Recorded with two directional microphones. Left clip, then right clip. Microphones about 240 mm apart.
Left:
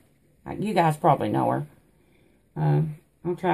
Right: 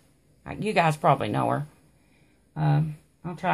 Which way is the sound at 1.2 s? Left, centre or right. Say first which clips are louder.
Left 2 dB; right.